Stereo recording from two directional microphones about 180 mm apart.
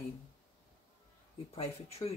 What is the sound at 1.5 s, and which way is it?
Speech, 35° left (ahead or behind).